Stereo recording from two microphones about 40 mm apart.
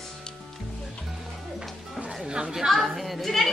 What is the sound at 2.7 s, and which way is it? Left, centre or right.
Speech, centre.